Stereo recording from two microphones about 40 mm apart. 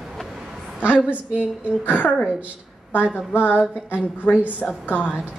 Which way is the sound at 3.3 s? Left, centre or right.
Left.